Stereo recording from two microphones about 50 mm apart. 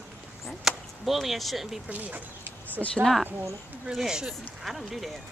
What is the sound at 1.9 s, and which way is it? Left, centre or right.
Speech, right.